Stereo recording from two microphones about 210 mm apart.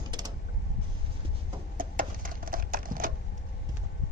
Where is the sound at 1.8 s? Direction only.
40° right (ahead or behind).